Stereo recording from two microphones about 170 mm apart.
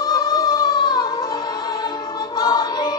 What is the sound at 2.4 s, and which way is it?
Music, 25° left (ahead or behind).